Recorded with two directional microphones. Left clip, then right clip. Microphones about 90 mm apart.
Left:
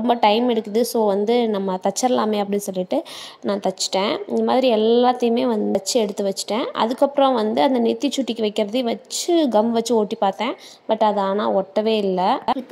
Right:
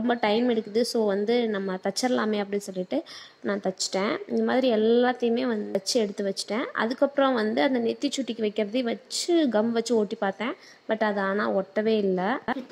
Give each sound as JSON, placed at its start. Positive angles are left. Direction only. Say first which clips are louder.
{"t": 0.0, "sound": "a woman's voice", "louder": "left 7 dB", "side_deg": 50}